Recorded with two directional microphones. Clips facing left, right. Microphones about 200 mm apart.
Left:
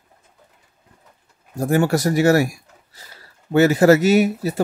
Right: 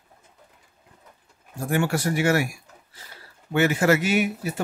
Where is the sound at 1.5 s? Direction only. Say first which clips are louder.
Left 6 dB; 40° left (ahead or behind).